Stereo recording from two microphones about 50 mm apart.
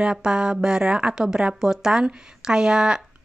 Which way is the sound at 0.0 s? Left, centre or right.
Centre.